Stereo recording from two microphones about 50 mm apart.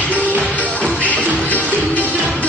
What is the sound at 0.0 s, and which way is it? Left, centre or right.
Music, left.